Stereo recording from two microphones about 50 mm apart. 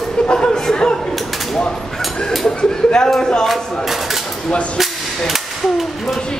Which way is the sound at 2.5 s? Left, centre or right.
Centre.